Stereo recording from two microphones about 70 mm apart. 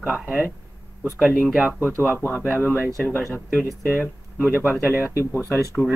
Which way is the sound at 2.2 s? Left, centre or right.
Left.